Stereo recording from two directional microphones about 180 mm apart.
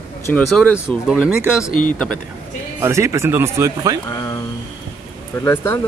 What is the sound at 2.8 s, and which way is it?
Speech, 15° right (ahead or behind).